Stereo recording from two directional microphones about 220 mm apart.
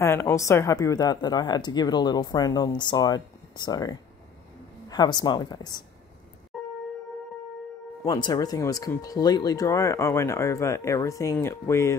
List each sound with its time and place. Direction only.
0.0 s a woman's voice: 10° left (ahead or behind)
6.5 s a sound: centre (ahead or behind)
8.0 s a woman's voice: 20° left (ahead or behind)